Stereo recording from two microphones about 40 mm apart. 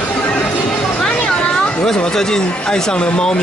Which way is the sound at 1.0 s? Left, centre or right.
Left.